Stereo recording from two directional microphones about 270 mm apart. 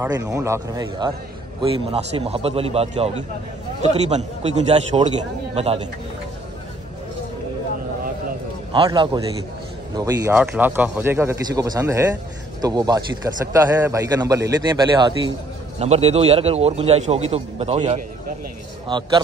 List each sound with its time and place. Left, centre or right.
0.0 s a man's voice: centre
8.7 s a man's voice: centre